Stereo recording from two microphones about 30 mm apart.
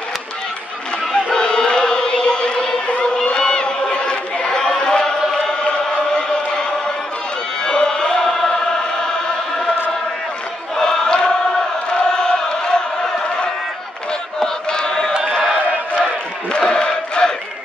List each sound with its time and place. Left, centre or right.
1.1 s chant: left
3.3 s chatter: left
7.6 s chant: left
10.8 s choir: left
11.9 s chant: left
14.4 s chant: left
16.5 s a sound: left